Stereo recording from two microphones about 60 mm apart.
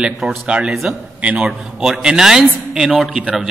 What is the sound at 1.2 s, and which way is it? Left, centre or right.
A man's voice, centre.